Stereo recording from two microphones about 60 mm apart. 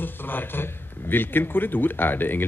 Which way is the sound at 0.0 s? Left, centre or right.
Left.